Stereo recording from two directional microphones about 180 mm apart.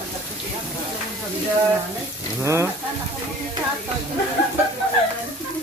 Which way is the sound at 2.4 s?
15° right (ahead or behind).